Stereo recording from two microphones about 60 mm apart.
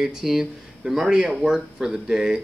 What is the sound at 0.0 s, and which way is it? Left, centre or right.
Speech, centre.